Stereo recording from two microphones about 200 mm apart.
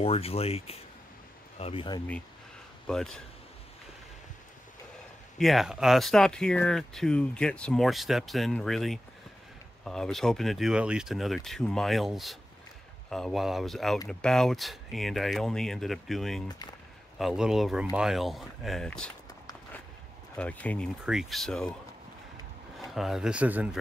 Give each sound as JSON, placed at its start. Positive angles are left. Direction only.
{"t": 0.0, "sound": "speech", "side_deg": 30}
{"t": 2.9, "sound": "speech", "side_deg": 0}
{"t": 5.4, "sound": "speech", "side_deg": 0}
{"t": 16.4, "sound": "speech", "side_deg": 20}
{"t": 17.2, "sound": "speech", "side_deg": -5}
{"t": 20.3, "sound": "speech", "side_deg": 5}
{"t": 22.8, "sound": "speech", "side_deg": 0}